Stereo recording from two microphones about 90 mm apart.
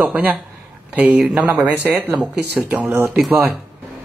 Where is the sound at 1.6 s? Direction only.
20° right (ahead or behind).